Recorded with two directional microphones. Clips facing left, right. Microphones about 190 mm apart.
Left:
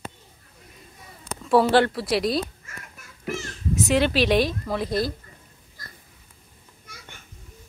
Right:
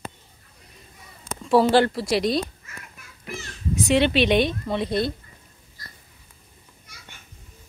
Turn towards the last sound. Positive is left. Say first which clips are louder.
# left 1 dB
turn(degrees=50)  # may be behind; listen again after turning